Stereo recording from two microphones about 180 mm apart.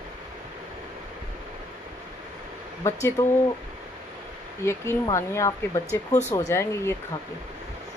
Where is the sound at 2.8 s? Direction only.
15° left (ahead or behind).